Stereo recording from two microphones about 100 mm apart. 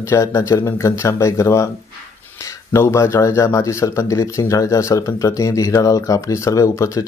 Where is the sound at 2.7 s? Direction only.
30° left (ahead or behind).